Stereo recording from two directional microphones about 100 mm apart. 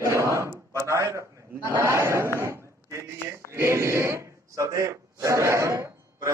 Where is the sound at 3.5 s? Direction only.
25° right (ahead or behind).